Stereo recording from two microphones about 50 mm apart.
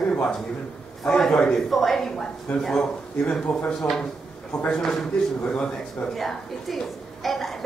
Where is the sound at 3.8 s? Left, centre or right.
Centre.